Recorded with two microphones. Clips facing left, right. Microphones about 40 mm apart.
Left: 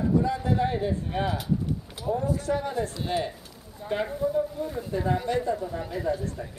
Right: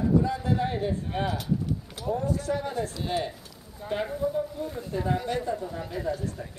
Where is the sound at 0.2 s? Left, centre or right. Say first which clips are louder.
Left 2 dB; centre.